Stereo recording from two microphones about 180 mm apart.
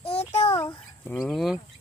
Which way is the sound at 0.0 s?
35° left (ahead or behind).